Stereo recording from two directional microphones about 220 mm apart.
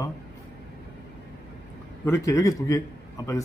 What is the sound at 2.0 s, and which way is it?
Speech, 15° left (ahead or behind).